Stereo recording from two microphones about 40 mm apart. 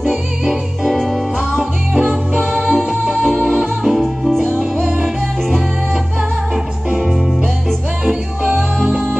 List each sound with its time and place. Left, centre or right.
0.5 s music: centre
1.5 s music: centre
2.5 s music: centre
8.8 s music: centre